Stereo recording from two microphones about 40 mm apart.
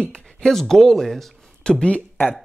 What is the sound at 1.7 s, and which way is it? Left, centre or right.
Speech, left.